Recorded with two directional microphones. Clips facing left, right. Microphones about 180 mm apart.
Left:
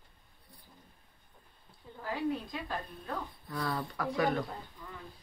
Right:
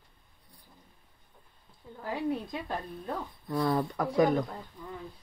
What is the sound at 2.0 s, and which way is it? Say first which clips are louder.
Speech: right 2 dB; 25° right (ahead or behind).